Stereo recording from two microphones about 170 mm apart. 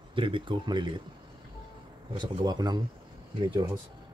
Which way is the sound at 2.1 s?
25° right (ahead or behind).